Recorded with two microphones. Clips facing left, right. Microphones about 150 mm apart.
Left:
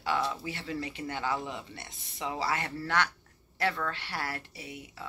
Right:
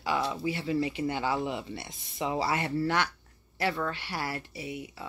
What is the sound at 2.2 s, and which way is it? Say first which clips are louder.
Speech: right 3 dB; 25° right (ahead or behind).